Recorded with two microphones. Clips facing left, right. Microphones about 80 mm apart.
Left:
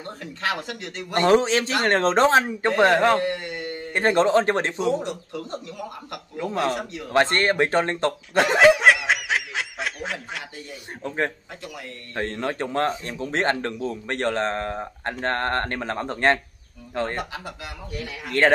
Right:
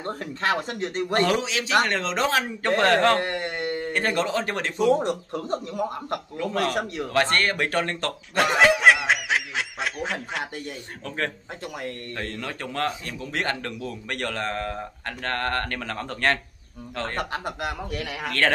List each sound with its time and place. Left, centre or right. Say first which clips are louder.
0.0 s speech: right 2 dB; right
1.2 s a man's voice: left 6 dB; left
3.2 s speech: left 1 dB; right
3.9 s speech: left 8 dB; left
4.8 s a man's voice: right 3 dB; right
6.7 s a man's voice: right 2 dB; right
7.1 s a man's voice: left 4 dB; left
8.4 s snicker: left 3 dB; centre
11.1 s a man's voice: left 3 dB; left
17.2 s a man's voice: right 4 dB; right